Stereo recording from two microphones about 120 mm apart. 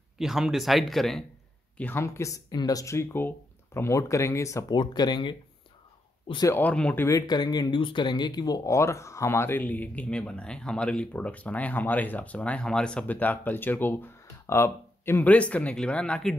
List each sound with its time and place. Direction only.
0.2 s speech: 5° right (ahead or behind)
1.8 s speech: 15° left (ahead or behind)
2.0 s speech: 25° left (ahead or behind)
4.7 s speech: 35° left (ahead or behind)
6.6 s speech: 10° left (ahead or behind)
7.1 s speech: 30° left (ahead or behind); by 16.3 s 5° left (ahead or behind)